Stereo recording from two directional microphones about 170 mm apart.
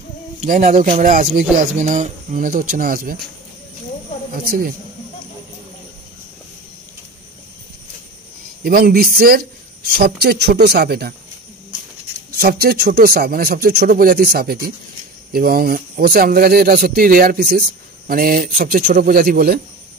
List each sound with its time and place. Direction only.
0.5 s speech: 45° right (ahead or behind)
4.3 s speech: 60° right (ahead or behind)
8.6 s speech: 60° right (ahead or behind)
12.4 s speech: 65° right (ahead or behind)